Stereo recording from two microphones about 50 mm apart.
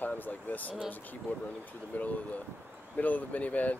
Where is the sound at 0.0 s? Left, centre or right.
Left.